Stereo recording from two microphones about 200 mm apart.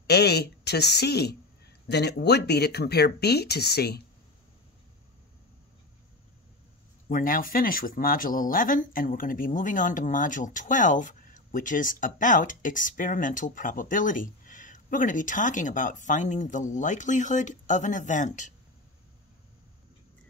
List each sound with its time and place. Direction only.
0.0 s speech: 55° left (ahead or behind)
7.1 s speech: 40° left (ahead or behind)